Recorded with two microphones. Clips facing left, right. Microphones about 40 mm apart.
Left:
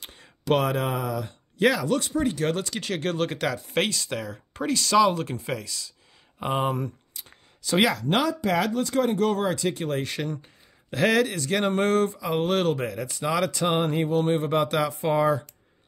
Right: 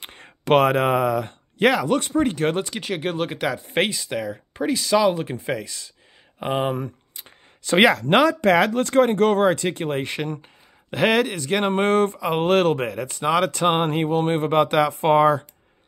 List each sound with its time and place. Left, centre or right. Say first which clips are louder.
0.0 s speech: right 4 dB; right
2.8 s speech: right 2 dB; centre
5.5 s speech: right 4 dB; right
6.4 s speech: right 2 dB; centre
7.6 s speech: right 6 dB; right